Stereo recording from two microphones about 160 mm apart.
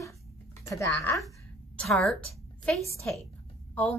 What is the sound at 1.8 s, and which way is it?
A woman's voice, 5° left (ahead or behind).